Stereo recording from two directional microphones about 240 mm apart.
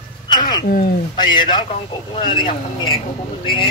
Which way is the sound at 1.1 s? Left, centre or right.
Centre.